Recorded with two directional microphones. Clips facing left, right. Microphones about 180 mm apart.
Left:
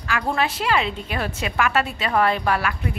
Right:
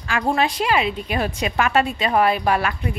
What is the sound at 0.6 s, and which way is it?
A woman's voice, 15° right (ahead or behind).